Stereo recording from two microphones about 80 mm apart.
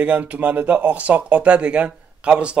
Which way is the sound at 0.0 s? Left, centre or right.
Centre.